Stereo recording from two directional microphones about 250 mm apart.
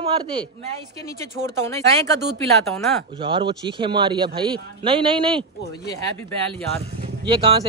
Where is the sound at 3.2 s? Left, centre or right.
Centre.